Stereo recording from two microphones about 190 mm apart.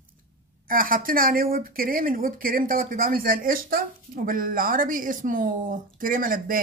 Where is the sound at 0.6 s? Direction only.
50° right (ahead or behind).